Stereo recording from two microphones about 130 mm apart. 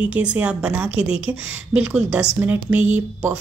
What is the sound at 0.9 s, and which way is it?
Speech, 45° left (ahead or behind).